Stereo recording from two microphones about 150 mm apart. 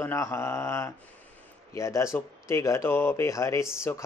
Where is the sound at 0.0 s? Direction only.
15° left (ahead or behind).